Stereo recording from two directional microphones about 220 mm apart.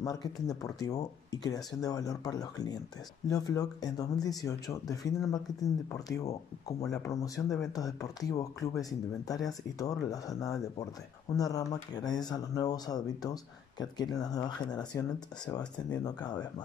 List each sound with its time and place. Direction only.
0.0 s speech: 15° left (ahead or behind)
7.4 s speech: centre (ahead or behind)
7.7 s speech: 15° left (ahead or behind)